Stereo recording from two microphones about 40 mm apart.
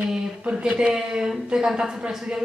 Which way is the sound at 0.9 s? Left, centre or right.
Centre.